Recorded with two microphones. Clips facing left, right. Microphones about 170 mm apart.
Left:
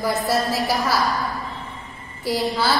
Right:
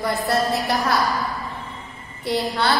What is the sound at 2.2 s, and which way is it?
Speech, centre (ahead or behind).